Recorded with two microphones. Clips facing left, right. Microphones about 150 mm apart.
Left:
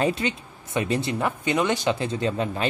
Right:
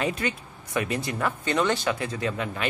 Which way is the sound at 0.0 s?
25° left (ahead or behind).